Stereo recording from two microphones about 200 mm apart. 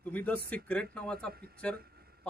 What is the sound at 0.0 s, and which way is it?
A man's voice, 10° left (ahead or behind).